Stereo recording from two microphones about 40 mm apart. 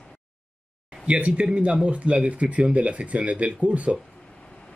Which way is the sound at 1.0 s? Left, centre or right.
Right.